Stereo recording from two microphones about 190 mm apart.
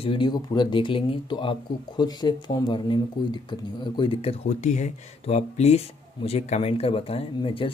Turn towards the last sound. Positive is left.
turn(degrees=30)  # may be behind; listen again after turning